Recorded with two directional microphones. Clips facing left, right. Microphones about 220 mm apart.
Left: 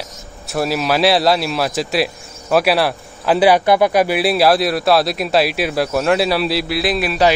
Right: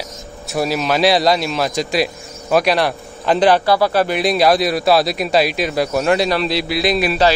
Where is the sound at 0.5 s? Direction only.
Centre (ahead or behind).